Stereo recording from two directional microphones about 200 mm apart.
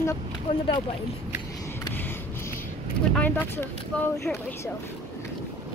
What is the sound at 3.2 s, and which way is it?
Speech, 10° left (ahead or behind).